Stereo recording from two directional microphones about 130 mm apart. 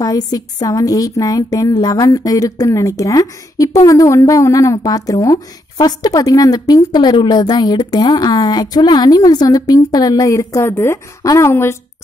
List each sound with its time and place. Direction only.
0.0 s a woman's voice: 30° left (ahead or behind)